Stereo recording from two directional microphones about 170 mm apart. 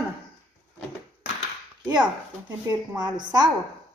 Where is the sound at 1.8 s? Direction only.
25° right (ahead or behind).